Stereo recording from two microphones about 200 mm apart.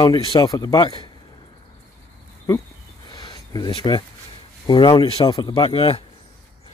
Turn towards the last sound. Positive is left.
turn(degrees=30)  # may be behind; listen again after turning